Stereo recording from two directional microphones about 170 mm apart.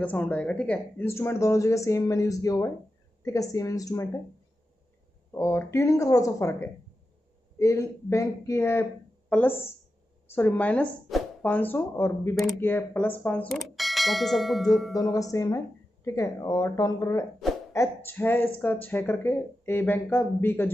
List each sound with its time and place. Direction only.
0.0 s speech: 10° left (ahead or behind)
5.3 s speech: 15° left (ahead or behind); by 15.0 s centre (ahead or behind)
15.0 s speech: 20° left (ahead or behind)